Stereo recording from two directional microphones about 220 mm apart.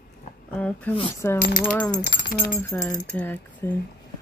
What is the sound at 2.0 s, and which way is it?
Speech, 40° left (ahead or behind).